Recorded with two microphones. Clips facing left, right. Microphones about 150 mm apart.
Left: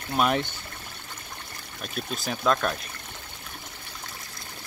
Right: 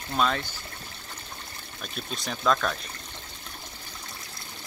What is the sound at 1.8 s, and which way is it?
Speech, 5° left (ahead or behind).